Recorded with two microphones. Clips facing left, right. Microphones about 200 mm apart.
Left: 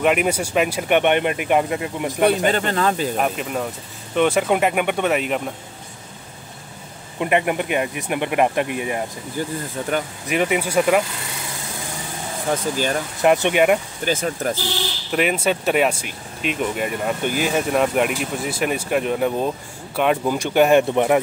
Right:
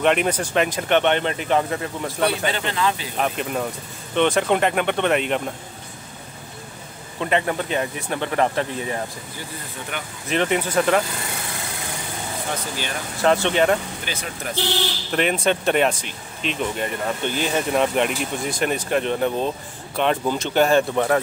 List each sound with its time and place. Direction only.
0.0 s speech: 5° left (ahead or behind)
2.2 s speech: 45° left (ahead or behind)
3.2 s speech: 5° left (ahead or behind)
7.2 s speech: 15° left (ahead or behind)
9.8 s speech: 40° left (ahead or behind)
10.2 s speech: 10° left (ahead or behind)
13.2 s speech: 15° left (ahead or behind)
14.0 s speech: 45° left (ahead or behind)
15.0 s speech: 5° left (ahead or behind)